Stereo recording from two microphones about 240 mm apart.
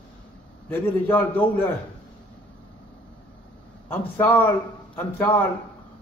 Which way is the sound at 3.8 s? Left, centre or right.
Centre.